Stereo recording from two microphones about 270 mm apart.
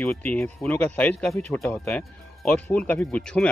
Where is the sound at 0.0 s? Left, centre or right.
Centre.